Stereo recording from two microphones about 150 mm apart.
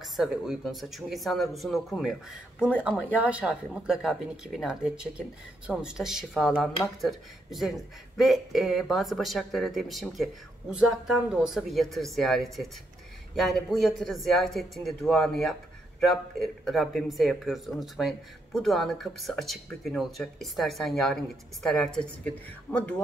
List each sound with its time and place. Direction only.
0.0 s a woman's voice: centre (ahead or behind)